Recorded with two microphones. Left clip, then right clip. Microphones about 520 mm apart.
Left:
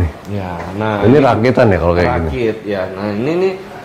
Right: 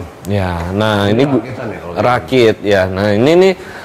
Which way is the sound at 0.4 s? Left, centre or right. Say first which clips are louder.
Right 4 dB; right.